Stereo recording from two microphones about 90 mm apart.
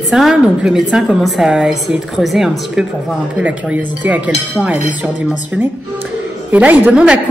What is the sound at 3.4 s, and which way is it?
Speech, 15° right (ahead or behind).